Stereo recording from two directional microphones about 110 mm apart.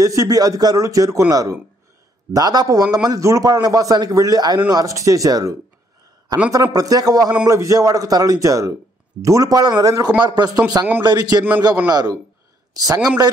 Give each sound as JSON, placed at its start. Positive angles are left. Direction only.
{"t": 0.0, "sound": "a man's voice", "side_deg": -30}